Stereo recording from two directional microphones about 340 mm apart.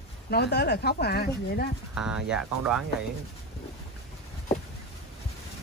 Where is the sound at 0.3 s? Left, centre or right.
Left.